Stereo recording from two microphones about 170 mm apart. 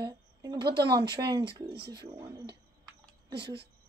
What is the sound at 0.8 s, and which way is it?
Speech, 70° right (ahead or behind).